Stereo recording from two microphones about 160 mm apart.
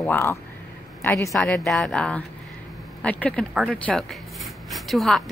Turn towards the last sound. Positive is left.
turn(degrees=0)  # may be behind; listen again after turning